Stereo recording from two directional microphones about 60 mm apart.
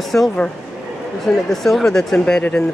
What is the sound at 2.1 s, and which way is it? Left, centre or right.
Speech, centre.